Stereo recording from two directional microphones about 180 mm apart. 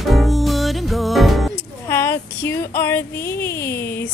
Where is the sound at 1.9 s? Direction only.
15° left (ahead or behind).